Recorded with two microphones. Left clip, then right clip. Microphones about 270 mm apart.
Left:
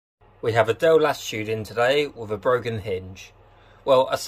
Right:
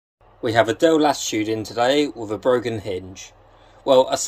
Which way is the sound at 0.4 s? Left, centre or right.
Centre.